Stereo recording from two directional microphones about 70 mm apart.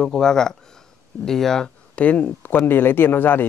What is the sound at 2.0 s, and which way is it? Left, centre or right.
Speech, centre.